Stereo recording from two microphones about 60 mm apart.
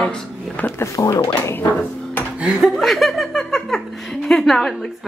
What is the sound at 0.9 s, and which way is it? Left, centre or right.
Speech, left.